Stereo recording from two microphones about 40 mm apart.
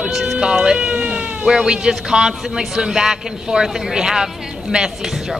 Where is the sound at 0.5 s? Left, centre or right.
Centre.